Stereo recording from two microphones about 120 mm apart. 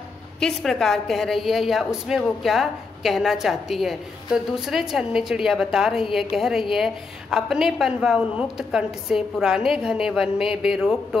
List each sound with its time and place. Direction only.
0.4 s a woman's voice: centre (ahead or behind)